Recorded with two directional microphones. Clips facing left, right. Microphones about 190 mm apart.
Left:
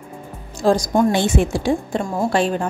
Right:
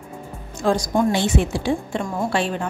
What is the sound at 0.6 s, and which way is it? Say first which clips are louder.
A woman's voice: left 3 dB; 40° left (ahead or behind).